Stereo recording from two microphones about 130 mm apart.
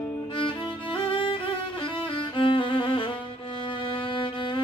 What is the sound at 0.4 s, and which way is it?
Music, 40° left (ahead or behind).